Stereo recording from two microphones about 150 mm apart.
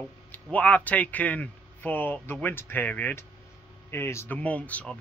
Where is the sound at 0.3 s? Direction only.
10° left (ahead or behind).